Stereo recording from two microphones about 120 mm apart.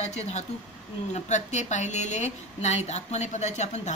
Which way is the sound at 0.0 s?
70° left (ahead or behind).